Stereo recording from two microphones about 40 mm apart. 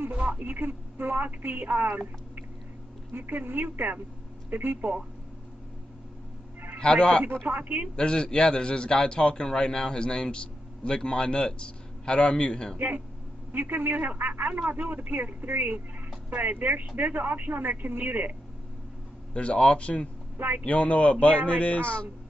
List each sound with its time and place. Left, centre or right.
0.3 s speech: right
0.6 s speech: right
3.1 s speech: right
6.8 s a man's voice: left
7.4 s speech: right
7.9 s a man's voice: left
12.7 s speech: right
16.3 s speech: right
19.3 s a man's voice: left
20.3 s speech: right
20.6 s speech: left